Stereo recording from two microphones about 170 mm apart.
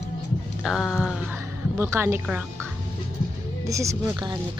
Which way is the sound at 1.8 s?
15° right (ahead or behind).